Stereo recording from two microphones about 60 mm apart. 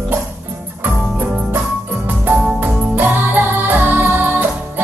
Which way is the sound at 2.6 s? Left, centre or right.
Right.